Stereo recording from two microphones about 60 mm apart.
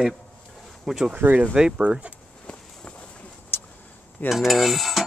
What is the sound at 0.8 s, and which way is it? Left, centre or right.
Speech, centre.